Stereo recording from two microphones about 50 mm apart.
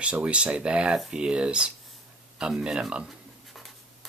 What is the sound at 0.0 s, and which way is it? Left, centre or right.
Speech, right.